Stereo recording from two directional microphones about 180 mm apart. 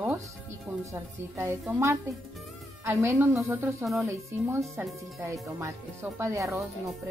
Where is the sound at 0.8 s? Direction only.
15° right (ahead or behind).